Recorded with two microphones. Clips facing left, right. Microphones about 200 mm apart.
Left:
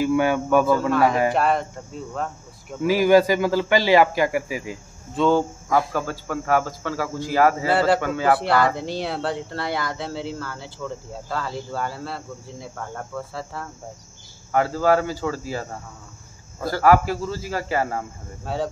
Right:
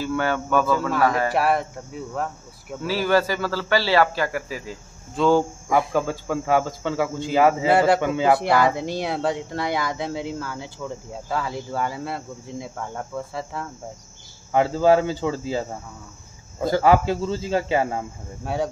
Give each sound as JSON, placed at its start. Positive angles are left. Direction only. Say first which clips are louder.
{"t": 0.0, "sound": "a man's voice", "louder": "left 4 dB", "side_deg": 15}
{"t": 1.3, "sound": "speech", "louder": "even", "side_deg": -10}
{"t": 2.8, "sound": "a man's voice", "louder": "left 5 dB", "side_deg": 15}
{"t": 5.1, "sound": "cricket", "louder": "right 1 dB", "side_deg": 0}
{"t": 5.7, "sound": "a man's voice", "louder": "right 2 dB", "side_deg": -20}
{"t": 16.6, "sound": "a man's voice", "louder": "even", "side_deg": -20}